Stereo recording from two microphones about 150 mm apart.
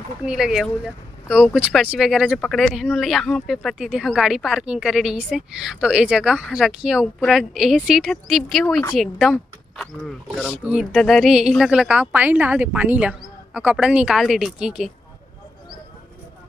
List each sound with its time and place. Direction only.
0.2 s speech: 5° right (ahead or behind)